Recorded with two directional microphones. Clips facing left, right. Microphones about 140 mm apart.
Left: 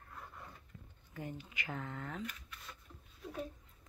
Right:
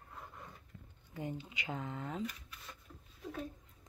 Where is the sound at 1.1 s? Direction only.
20° right (ahead or behind).